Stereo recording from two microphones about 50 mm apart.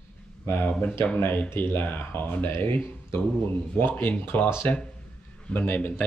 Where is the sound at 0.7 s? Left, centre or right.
Left.